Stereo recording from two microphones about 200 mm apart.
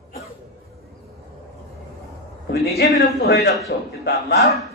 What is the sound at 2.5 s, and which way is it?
A man's voice, 55° left (ahead or behind).